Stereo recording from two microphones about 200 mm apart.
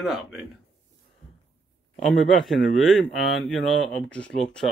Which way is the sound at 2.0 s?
Centre (ahead or behind).